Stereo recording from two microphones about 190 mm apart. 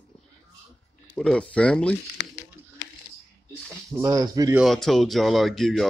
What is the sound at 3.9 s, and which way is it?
Speech, 15° right (ahead or behind).